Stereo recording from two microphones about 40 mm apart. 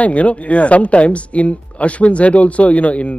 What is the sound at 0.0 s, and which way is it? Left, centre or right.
Speech, left.